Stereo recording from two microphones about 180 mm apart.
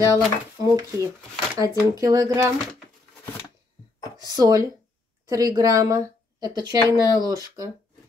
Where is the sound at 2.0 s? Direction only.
20° right (ahead or behind).